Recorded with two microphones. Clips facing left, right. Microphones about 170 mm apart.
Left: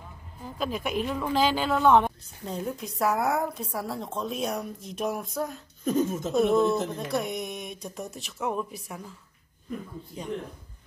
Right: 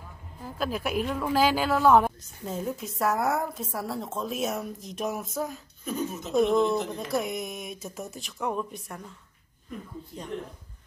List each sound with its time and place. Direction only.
0.4 s a woman's voice: 5° right (ahead or behind)
5.9 s speech: 45° left (ahead or behind)
6.3 s a woman's voice: 5° left (ahead or behind)